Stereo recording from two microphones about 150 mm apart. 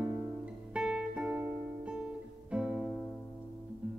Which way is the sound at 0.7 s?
5° right (ahead or behind).